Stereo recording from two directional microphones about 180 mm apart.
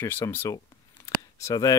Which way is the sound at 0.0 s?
15° left (ahead or behind).